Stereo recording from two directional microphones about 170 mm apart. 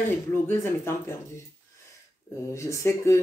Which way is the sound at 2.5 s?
15° left (ahead or behind).